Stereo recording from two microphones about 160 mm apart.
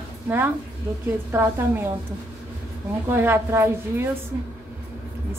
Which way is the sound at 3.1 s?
15° right (ahead or behind).